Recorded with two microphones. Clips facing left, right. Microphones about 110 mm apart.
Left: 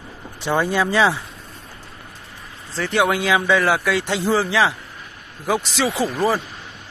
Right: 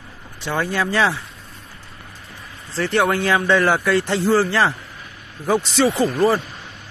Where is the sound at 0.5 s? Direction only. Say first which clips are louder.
Left 2 dB; 10° left (ahead or behind).